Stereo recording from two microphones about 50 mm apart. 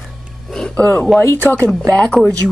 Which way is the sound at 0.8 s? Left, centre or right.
Left.